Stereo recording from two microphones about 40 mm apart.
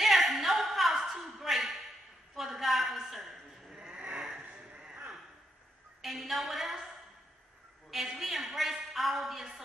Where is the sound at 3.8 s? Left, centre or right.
Right.